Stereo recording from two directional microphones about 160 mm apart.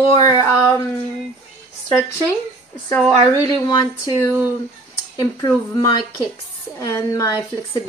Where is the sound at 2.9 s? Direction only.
Centre (ahead or behind).